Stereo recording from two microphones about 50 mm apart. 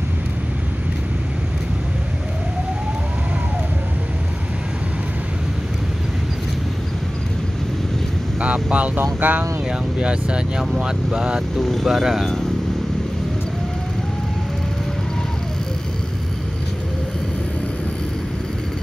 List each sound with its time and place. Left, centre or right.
8.4 s speech: right
9.7 s speech: centre
11.6 s speech: centre